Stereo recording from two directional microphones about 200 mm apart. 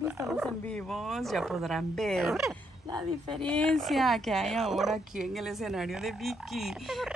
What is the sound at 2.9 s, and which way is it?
Speech, 20° right (ahead or behind).